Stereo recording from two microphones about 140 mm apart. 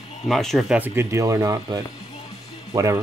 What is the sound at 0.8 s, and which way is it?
Speech, 15° right (ahead or behind).